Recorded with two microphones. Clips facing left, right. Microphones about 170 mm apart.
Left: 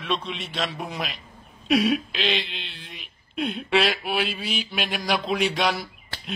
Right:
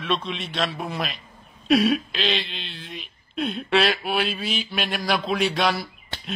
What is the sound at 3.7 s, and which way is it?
Speech, 10° left (ahead or behind).